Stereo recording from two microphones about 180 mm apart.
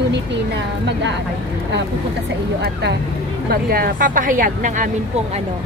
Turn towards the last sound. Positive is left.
turn(degrees=-45)  # may be behind; listen again after turning